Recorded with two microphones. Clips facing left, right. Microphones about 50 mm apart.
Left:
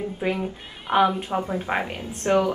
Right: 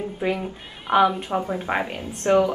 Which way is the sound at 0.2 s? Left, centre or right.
Centre.